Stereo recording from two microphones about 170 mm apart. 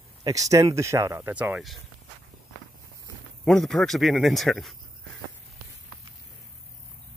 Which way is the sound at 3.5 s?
Centre (ahead or behind).